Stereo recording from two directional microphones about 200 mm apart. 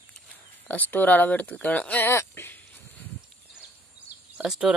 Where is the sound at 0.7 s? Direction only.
10° left (ahead or behind).